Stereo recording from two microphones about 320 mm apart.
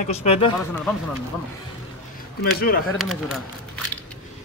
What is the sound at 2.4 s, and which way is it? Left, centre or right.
Speech, left.